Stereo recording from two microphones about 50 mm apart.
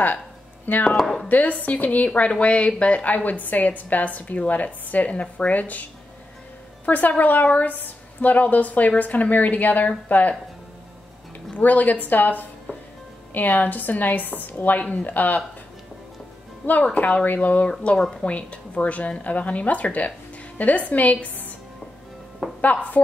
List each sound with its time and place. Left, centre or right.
0.9 s speech: centre
1.3 s a woman's voice: left
6.9 s a woman's voice: left
11.5 s a woman's voice: left
16.9 s a woman's voice: left
22.4 s a woman's voice: centre